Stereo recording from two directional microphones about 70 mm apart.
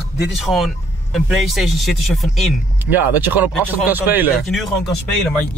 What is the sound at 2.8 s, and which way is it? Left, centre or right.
Speech, right.